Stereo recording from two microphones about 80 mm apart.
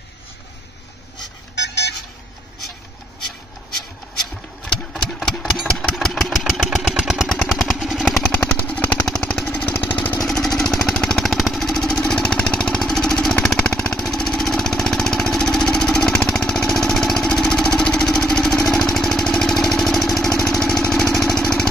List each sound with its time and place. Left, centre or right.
4.9 s engine: centre
7.4 s vehicle: centre
8.2 s vehicle: centre
9.9 s lawn mower: centre
10.2 s vehicle: centre
18.7 s engine: centre
20.4 s vehicle: centre
20.8 s engine: centre